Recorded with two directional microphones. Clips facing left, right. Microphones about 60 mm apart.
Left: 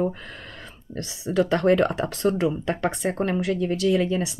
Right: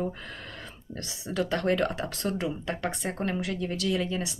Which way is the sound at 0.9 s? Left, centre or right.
Left.